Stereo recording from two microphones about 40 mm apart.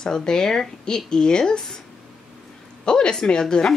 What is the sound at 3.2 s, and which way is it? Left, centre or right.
Speech, centre.